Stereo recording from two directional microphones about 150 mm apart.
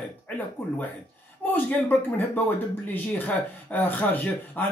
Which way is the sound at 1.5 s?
10° left (ahead or behind).